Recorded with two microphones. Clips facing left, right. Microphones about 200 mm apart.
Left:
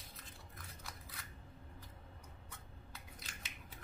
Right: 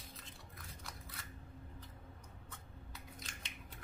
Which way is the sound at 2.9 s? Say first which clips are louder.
Right 3 dB; 5° left (ahead or behind).